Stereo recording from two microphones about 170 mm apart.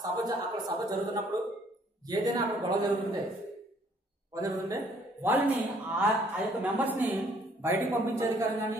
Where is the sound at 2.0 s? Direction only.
25° right (ahead or behind).